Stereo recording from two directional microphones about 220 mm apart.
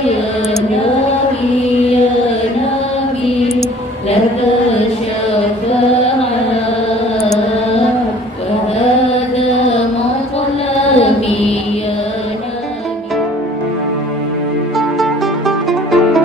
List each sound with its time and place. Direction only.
10.8 s mantra: 25° left (ahead or behind)
14.8 s music: centre (ahead or behind)